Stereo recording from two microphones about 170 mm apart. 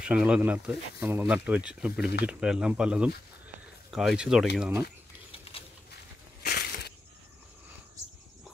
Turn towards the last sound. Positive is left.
turn(degrees=65)  # may be behind; listen again after turning